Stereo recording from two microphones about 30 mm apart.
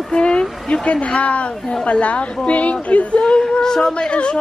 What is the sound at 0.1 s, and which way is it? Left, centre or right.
A woman's voice, left.